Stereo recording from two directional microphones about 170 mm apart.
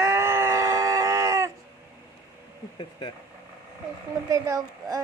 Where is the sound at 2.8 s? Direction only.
30° left (ahead or behind).